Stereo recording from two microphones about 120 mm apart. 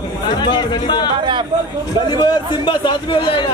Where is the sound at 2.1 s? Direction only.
40° left (ahead or behind).